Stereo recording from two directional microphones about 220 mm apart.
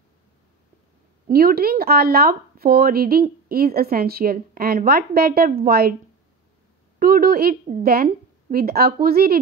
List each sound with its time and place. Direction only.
1.2 s speech: 45° right (ahead or behind)
7.0 s speech: 40° right (ahead or behind)